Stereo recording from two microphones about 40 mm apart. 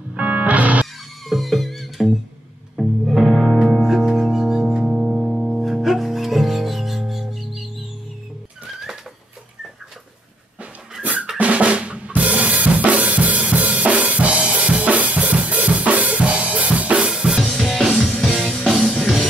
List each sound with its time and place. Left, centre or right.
0.1 s music: right
1.2 s music: centre
8.6 s a sound: centre
10.6 s dog: right
11.3 s drum: right
12.1 s drum kit: right
17.0 s drum kit: centre
17.4 s music: centre